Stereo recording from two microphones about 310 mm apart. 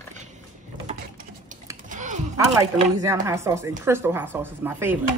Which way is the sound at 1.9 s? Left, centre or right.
Right.